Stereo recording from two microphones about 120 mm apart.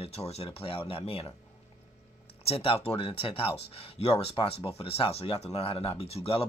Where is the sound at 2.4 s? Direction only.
50° left (ahead or behind).